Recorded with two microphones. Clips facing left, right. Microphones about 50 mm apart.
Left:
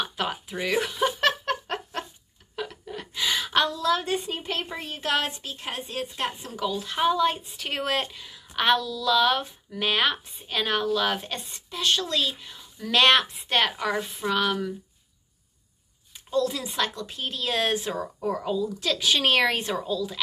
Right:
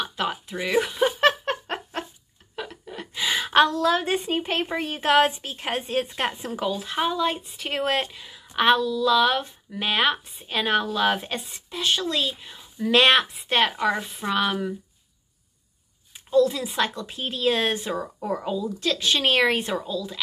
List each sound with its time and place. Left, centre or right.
0.0 s a sound: centre
3.4 s a sound: right
3.8 s a woman's voice: right
6.8 s speech: centre
14.2 s speech: centre
16.1 s a woman's voice: centre
18.8 s a woman's voice: centre